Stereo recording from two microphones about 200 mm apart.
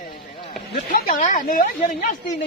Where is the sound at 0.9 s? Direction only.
40° left (ahead or behind).